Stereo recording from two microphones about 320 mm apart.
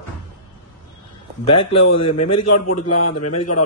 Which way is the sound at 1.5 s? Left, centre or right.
Left.